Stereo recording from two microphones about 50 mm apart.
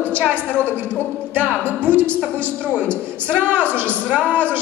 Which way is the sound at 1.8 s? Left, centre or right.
Right.